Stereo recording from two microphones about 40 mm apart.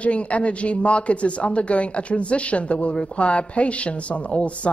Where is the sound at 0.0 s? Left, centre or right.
Left.